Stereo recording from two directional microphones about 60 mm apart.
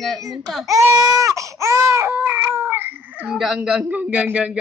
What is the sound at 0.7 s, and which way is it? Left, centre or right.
Baby cry, right.